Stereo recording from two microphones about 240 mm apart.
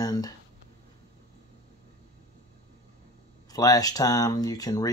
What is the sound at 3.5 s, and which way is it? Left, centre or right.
Speech, centre.